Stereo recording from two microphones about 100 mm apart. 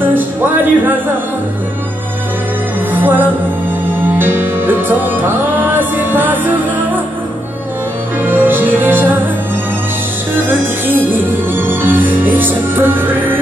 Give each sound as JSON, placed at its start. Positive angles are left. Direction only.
{"t": 0.0, "sound": "music", "side_deg": -20}
{"t": 2.9, "sound": "music", "side_deg": -20}
{"t": 8.2, "sound": "music", "side_deg": -20}
{"t": 10.3, "sound": "music", "side_deg": -20}